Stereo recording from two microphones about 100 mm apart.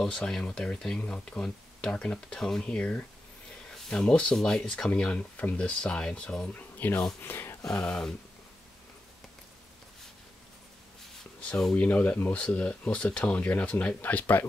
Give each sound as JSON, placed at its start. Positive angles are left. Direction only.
{"t": 0.0, "sound": "speech", "side_deg": 5}
{"t": 6.5, "sound": "speech", "side_deg": 20}
{"t": 7.6, "sound": "speech", "side_deg": 10}
{"t": 11.4, "sound": "speech", "side_deg": 10}